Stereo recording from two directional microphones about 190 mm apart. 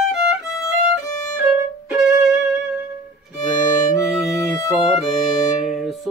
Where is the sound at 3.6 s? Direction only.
45° left (ahead or behind).